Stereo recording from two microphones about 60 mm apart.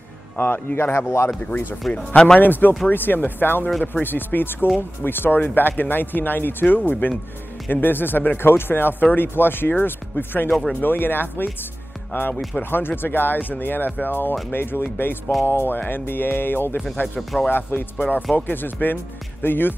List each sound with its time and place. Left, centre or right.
0.4 s speech: left
0.9 s speech: left
1.5 s speech: left
2.0 s speech: centre
2.4 s speech: left
10.5 s speech: centre
10.8 s speech: left
16.9 s speech: left
17.5 s speech: left
17.9 s speech: left
18.3 s speech: left